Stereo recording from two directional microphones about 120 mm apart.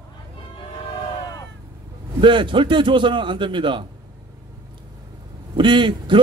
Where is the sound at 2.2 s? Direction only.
45° right (ahead or behind).